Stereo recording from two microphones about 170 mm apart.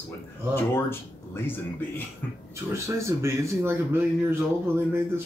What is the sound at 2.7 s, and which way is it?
Speech, 15° right (ahead or behind).